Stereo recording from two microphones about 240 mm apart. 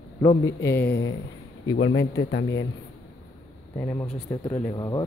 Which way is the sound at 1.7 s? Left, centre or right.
Left.